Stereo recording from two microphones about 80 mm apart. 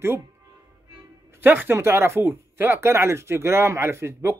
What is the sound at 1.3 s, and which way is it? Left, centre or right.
Speech, right.